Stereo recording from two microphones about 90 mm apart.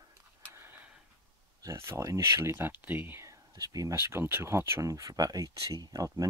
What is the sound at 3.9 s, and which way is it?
Speech, 25° right (ahead or behind).